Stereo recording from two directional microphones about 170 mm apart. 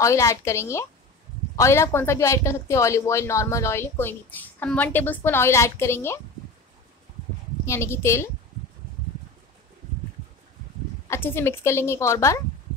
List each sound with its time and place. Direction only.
0.0 s a woman's voice: 20° left (ahead or behind)
7.6 s a woman's voice: 15° left (ahead or behind)
11.1 s a woman's voice: 15° left (ahead or behind)